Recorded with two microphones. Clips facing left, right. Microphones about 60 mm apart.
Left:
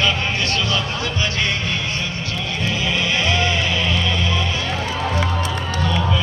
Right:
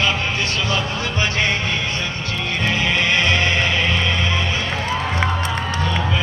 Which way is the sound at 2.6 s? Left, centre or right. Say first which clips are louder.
Right 3 dB; right.